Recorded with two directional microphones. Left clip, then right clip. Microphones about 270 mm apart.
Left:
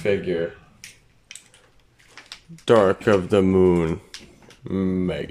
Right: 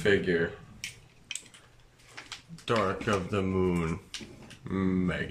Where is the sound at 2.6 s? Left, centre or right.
Left.